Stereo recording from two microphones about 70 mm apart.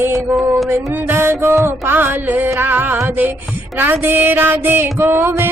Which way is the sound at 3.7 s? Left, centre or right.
Right.